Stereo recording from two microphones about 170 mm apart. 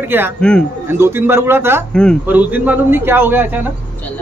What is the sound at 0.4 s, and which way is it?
Speech, 5° left (ahead or behind).